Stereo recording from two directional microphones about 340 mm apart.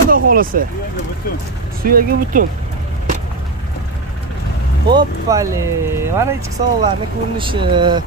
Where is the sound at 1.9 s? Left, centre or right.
Right.